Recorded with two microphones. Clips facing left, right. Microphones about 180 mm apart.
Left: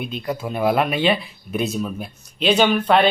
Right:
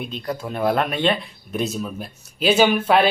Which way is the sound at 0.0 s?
5° left (ahead or behind).